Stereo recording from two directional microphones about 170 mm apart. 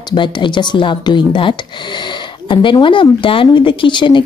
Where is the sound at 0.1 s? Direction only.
30° left (ahead or behind).